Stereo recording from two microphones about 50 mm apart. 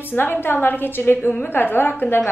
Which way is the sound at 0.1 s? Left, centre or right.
Left.